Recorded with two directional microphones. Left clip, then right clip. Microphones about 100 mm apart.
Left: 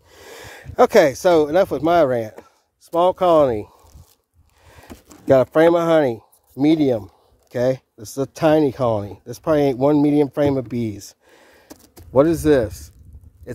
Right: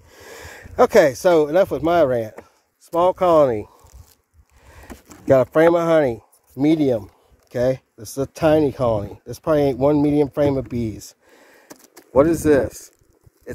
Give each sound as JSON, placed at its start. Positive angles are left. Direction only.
{"t": 0.1, "sound": "speech", "side_deg": 25}
{"t": 4.6, "sound": "a sound", "side_deg": 35}
{"t": 5.2, "sound": "speech", "side_deg": 30}